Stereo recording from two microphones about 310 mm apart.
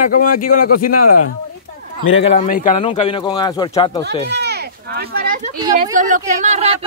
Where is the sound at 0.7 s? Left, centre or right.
Left.